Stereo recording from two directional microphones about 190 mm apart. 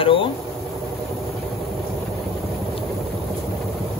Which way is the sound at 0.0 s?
25° left (ahead or behind).